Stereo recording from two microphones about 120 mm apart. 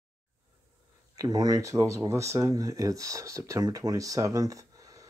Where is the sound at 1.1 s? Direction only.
30° right (ahead or behind).